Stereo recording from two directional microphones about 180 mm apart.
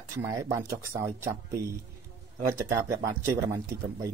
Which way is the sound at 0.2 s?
15° right (ahead or behind).